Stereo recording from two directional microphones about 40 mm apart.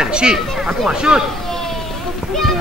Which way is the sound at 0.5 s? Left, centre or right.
Centre.